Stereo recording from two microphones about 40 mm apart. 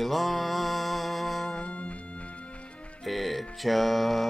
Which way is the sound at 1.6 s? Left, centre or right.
Left.